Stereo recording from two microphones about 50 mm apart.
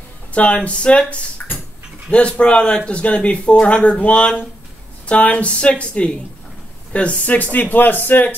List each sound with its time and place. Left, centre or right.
0.3 s speech: left
1.4 s a sound: centre
2.0 s a man's voice: left